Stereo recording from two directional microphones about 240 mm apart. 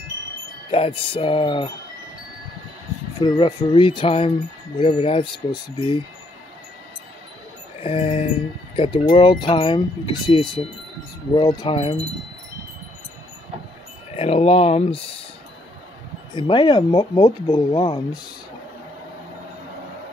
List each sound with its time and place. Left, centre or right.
0.7 s speech: left
3.2 s speech: centre
7.8 s speech: left
14.1 s speech: left
16.3 s speech: centre